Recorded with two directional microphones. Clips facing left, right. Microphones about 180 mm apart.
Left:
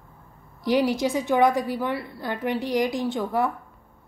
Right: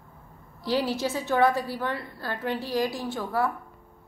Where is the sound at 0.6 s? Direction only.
15° left (ahead or behind).